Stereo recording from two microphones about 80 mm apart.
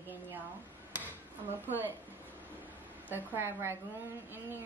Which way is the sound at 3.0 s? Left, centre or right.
Right.